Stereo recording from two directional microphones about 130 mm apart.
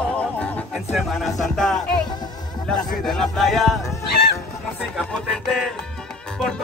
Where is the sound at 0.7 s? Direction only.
Centre (ahead or behind).